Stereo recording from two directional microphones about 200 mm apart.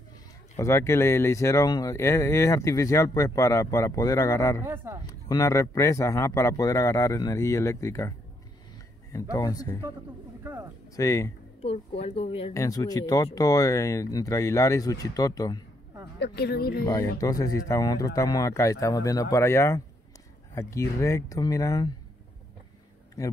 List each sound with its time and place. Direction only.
0.6 s speech: 15° left (ahead or behind)
4.6 s speech: 15° right (ahead or behind)
5.0 s speech: 15° left (ahead or behind)
9.1 s speech: 15° left (ahead or behind)
11.0 s speech: 15° left (ahead or behind)
11.6 s a woman's voice: 30° left (ahead or behind)
12.5 s speech: 20° left (ahead or behind)
16.2 s a woman's voice: 55° left (ahead or behind)
16.8 s speech: 15° left (ahead or behind)
23.2 s speech: 15° left (ahead or behind)